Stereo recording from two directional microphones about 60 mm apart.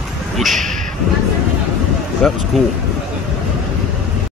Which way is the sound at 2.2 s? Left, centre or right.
Centre.